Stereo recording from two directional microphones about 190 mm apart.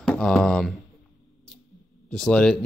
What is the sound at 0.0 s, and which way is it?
Speech, 5° left (ahead or behind).